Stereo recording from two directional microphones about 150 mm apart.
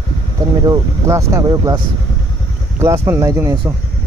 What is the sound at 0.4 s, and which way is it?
Speech, 25° right (ahead or behind).